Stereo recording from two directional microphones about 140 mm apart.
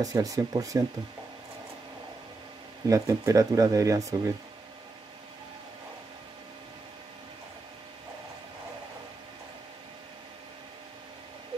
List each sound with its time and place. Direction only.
0.0 s speech: 25° right (ahead or behind)
2.9 s speech: 25° right (ahead or behind)